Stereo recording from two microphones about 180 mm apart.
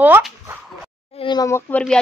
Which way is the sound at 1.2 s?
25° left (ahead or behind).